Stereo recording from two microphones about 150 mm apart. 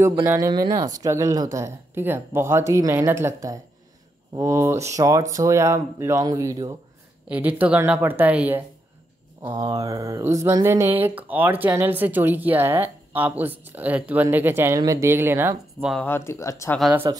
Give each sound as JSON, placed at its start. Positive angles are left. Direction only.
{"t": 0.1, "sound": "speech", "side_deg": -20}
{"t": 4.4, "sound": "speech", "side_deg": -20}
{"t": 7.2, "sound": "speech", "side_deg": -10}
{"t": 9.5, "sound": "speech", "side_deg": -25}
{"t": 15.8, "sound": "speech", "side_deg": 0}
{"t": 16.1, "sound": "speech", "side_deg": 15}
{"t": 17.1, "sound": "speech", "side_deg": -25}